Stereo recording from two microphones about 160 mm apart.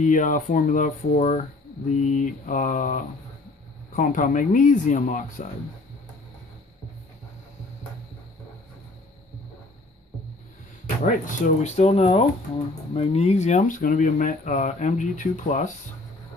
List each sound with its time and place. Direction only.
0.0 s speech: 50° left (ahead or behind)
11.1 s speech: 50° left (ahead or behind)